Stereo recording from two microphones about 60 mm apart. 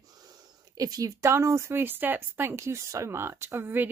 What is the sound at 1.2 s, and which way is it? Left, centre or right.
Speech, right.